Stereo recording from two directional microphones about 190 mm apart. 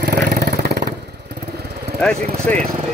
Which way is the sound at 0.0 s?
50° right (ahead or behind).